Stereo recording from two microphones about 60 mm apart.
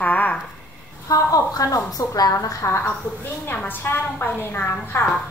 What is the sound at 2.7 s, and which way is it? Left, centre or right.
A woman's voice, left.